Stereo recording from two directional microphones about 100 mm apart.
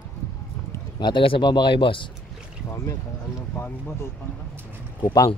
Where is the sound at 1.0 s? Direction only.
50° left (ahead or behind).